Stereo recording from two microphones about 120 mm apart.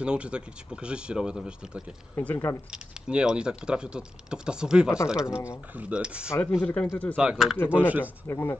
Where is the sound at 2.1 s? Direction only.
15° left (ahead or behind).